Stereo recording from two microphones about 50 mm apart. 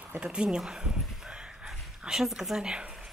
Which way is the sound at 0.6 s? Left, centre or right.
Centre.